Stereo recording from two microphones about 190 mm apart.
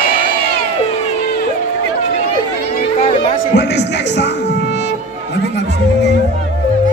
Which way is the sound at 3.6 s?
65° left (ahead or behind).